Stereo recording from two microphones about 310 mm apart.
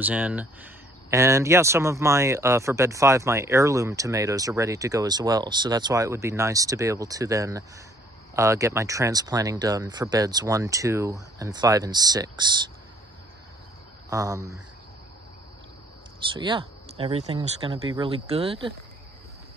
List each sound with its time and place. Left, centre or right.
0.0 s speech: centre
14.1 s speech: centre
16.3 s speech: centre